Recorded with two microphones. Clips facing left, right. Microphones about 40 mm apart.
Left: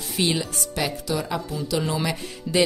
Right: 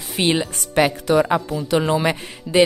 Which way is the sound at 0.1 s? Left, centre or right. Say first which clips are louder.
Right 5 dB; right.